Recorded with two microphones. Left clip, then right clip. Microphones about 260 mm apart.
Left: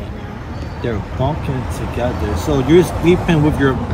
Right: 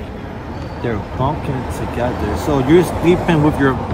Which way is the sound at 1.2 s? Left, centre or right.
Centre.